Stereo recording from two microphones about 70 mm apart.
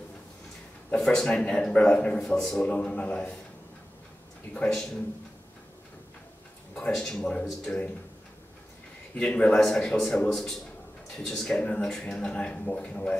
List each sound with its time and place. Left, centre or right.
0.9 s speech: centre
2.2 s a man's voice: centre
2.6 s speech: centre
4.6 s speech: centre
6.7 s speech: centre
9.1 s speech: centre